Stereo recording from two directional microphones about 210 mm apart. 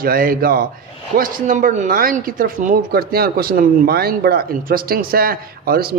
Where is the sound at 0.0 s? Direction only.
45° right (ahead or behind).